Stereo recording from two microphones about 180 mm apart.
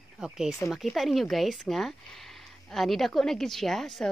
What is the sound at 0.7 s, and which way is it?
A woman's voice, centre (ahead or behind).